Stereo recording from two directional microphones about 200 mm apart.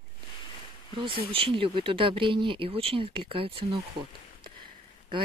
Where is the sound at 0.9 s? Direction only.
25° right (ahead or behind).